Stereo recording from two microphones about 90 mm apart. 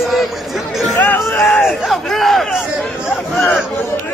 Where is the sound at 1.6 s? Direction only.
Centre (ahead or behind).